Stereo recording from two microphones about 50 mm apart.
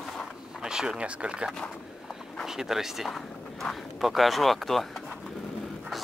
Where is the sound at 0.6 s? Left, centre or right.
Centre.